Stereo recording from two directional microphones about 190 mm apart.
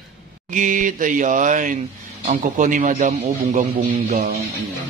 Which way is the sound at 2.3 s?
45° right (ahead or behind).